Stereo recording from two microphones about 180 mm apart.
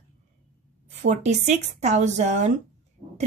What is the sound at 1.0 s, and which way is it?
A woman's voice, 40° right (ahead or behind).